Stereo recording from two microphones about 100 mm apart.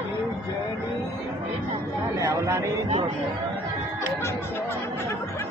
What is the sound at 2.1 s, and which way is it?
Speech, 30° right (ahead or behind).